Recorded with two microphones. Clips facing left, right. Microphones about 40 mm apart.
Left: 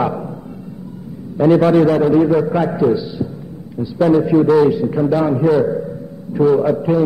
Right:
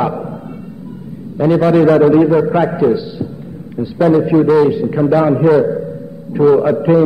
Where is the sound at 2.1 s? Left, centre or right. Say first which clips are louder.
Right 3 dB; centre.